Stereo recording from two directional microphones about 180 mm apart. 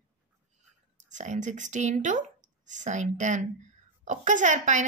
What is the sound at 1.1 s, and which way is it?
A woman's voice, 45° right (ahead or behind).